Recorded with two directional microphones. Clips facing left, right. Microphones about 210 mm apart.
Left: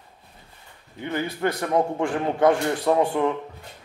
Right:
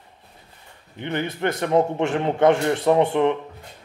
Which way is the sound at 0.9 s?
20° right (ahead or behind).